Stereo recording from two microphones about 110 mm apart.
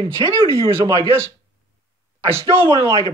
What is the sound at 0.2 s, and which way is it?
Speech, 50° right (ahead or behind).